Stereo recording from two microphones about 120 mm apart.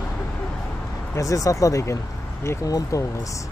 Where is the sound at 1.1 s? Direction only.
30° left (ahead or behind).